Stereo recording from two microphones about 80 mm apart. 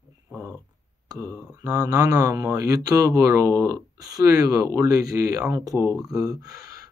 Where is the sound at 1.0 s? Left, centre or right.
Right.